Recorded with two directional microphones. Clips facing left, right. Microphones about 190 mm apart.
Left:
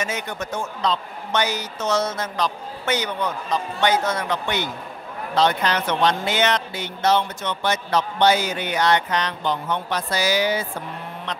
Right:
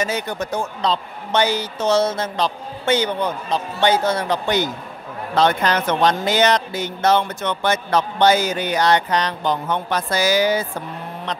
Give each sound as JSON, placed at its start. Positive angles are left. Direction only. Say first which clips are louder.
{"t": 0.0, "sound": "a woman's voice", "louder": "right 4 dB", "side_deg": -35}
{"t": 5.3, "sound": "speech", "louder": "right 3 dB", "side_deg": -55}